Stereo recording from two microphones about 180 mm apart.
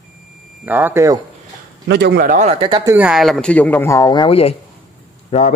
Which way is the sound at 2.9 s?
5° right (ahead or behind).